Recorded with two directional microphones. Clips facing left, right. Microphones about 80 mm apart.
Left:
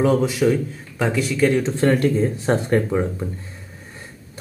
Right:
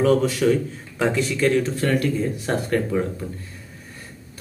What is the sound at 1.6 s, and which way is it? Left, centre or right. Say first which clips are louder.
A man's voice: left 4 dB; left.